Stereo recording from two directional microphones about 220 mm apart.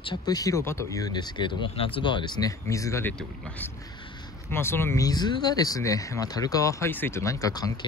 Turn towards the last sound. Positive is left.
turn(degrees=15)  # may be behind; listen again after turning